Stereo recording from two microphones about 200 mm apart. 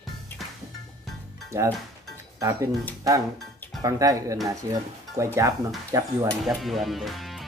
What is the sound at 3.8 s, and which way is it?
Speech, 15° right (ahead or behind).